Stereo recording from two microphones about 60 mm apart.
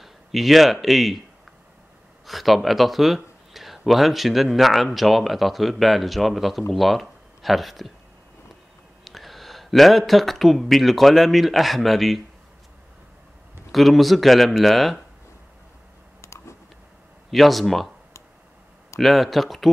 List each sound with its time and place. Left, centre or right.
0.0 s speech: centre
2.2 s speech: centre
9.0 s speech: centre
13.7 s speech: centre
16.2 s computer keyboard: left
17.3 s speech: centre
18.9 s speech: centre